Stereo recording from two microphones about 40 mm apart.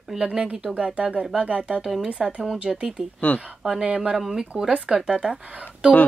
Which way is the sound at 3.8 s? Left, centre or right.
Right.